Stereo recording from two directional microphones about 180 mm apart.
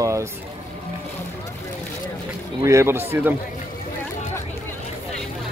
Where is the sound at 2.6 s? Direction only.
15° right (ahead or behind).